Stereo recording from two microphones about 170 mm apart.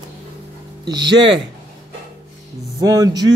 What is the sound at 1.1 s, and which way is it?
Speech, 90° right.